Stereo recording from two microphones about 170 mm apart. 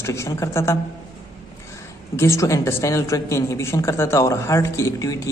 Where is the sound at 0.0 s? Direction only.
15° left (ahead or behind).